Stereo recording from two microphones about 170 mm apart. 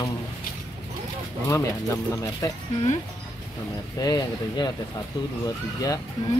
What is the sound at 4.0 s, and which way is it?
Speech, 25° left (ahead or behind).